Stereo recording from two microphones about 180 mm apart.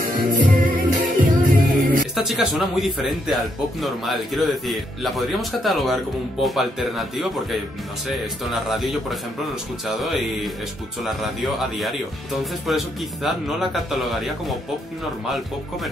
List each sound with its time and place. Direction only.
0.4 s music: 50° right (ahead or behind)
2.1 s speech: centre (ahead or behind)